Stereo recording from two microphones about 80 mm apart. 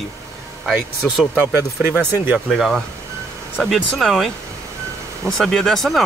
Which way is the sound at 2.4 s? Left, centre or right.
Centre.